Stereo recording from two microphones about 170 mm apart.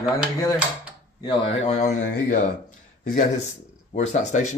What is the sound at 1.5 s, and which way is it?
A man's voice, 35° left (ahead or behind).